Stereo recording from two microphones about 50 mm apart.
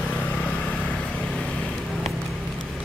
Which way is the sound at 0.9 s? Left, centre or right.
Centre.